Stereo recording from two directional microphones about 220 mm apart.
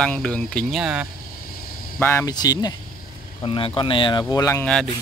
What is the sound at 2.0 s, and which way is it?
Speech, 10° left (ahead or behind).